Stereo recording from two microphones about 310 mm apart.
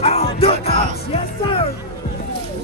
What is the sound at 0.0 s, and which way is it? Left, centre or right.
Music, centre.